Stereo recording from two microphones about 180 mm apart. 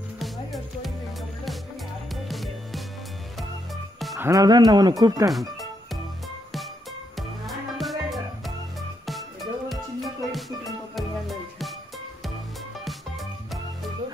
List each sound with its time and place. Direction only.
0.2 s music: centre (ahead or behind)
2.2 s music: centre (ahead or behind)
4.2 s speech: 20° right (ahead or behind)
5.3 s music: centre (ahead or behind)
7.2 s music: centre (ahead or behind)
12.8 s music: centre (ahead or behind)